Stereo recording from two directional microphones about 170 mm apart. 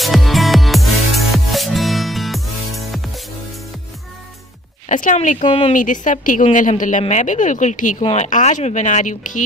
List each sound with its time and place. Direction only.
0.0 s music: centre (ahead or behind)
4.8 s speech: 50° left (ahead or behind)
5.4 s speech: 30° left (ahead or behind)
5.7 s a woman's voice: 50° left (ahead or behind)